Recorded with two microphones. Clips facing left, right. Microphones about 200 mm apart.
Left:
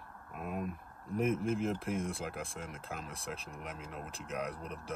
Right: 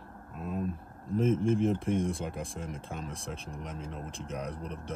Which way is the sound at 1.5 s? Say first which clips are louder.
Right 6 dB; centre (ahead or behind).